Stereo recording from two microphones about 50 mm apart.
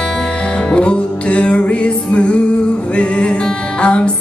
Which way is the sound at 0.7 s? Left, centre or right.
Left.